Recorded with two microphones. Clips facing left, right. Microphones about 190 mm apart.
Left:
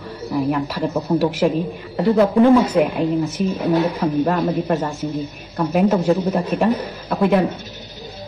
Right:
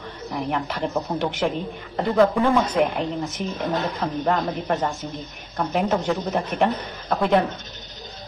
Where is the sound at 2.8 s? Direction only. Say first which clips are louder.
Left 5 dB; 10° left (ahead or behind).